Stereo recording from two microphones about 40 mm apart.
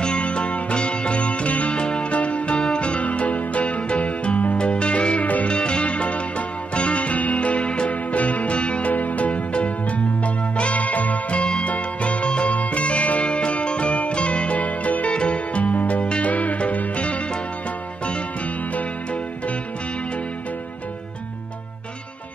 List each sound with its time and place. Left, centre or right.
0.0 s music: left
5.5 s music: left